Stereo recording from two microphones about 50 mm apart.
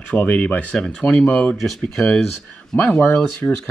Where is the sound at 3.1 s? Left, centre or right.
Centre.